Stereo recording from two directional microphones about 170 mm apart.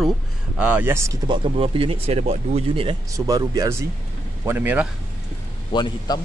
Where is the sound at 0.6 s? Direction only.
10° right (ahead or behind).